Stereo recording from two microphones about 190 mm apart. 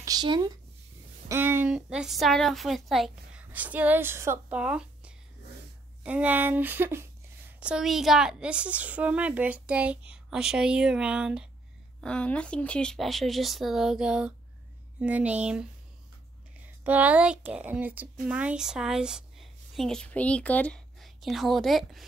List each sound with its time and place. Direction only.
0.0 s a sound: 20° right (ahead or behind)
1.3 s a woman's voice: 10° right (ahead or behind)
16.8 s a woman's voice: 10° right (ahead or behind)